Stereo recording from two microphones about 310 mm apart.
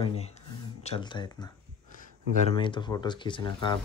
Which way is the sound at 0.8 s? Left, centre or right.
Centre.